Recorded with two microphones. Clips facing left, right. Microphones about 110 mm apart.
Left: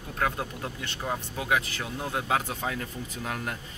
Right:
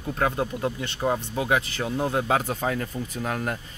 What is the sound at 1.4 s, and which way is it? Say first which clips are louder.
Speech: right 4 dB; 30° right (ahead or behind).